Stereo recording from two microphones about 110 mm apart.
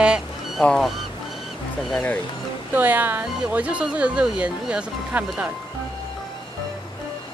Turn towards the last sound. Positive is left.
turn(degrees=-10)  # may be behind; listen again after turning